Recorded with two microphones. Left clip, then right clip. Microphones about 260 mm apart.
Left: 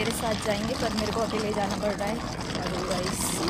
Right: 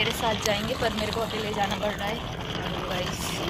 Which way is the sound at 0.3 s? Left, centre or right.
Right.